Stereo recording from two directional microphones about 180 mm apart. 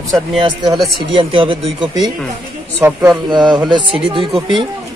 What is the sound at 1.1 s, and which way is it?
Speech, 30° right (ahead or behind).